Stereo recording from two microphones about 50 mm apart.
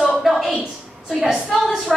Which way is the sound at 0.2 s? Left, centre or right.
Centre.